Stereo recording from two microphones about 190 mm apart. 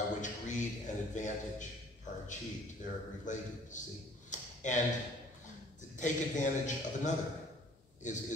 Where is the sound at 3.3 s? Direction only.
40° left (ahead or behind).